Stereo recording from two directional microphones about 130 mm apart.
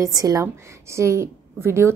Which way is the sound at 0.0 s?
30° right (ahead or behind).